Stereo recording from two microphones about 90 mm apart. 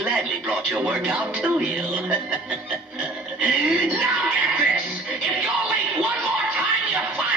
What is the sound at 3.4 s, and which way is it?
Music, 15° right (ahead or behind).